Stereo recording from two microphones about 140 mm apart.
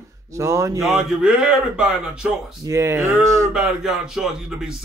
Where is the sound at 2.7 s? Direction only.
20° right (ahead or behind).